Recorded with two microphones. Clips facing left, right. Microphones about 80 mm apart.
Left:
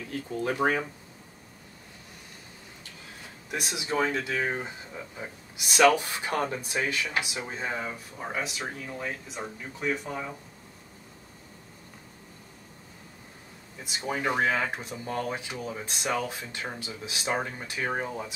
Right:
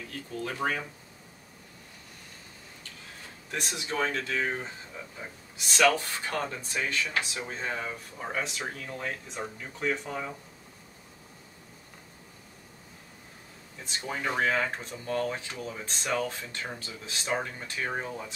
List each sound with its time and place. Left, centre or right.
0.3 s speech: left
3.4 s speech: centre
13.8 s speech: centre